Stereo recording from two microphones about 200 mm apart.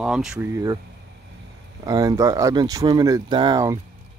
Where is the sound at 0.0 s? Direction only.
5° right (ahead or behind).